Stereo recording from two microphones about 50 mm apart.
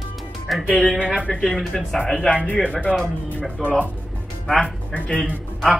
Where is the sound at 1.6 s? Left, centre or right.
Centre.